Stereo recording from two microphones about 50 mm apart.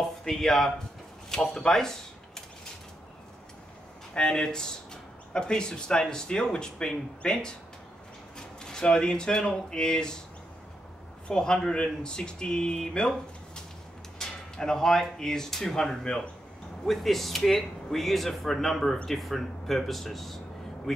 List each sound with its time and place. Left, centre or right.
0.0 s speech: centre
4.1 s speech: centre
11.2 s speech: centre
14.1 s speech: centre